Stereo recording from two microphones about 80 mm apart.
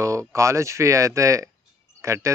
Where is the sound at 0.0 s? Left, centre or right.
Right.